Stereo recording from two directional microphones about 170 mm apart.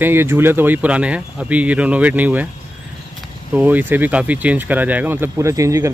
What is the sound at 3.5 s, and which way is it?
Speech, 10° right (ahead or behind).